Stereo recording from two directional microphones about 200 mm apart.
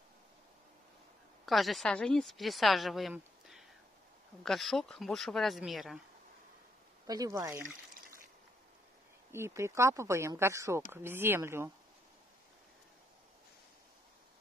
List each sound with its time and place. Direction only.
1.4 s a woman's voice: centre (ahead or behind)
7.1 s speech: 15° right (ahead or behind)
9.3 s speech: 15° right (ahead or behind)